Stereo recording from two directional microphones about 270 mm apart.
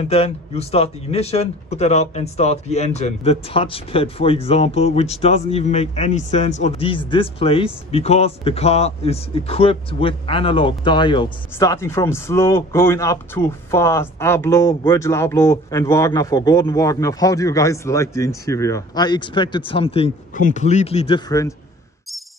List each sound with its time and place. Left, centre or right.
0.1 s speech: left